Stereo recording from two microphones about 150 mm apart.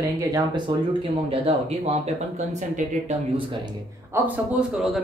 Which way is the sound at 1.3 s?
40° right (ahead or behind).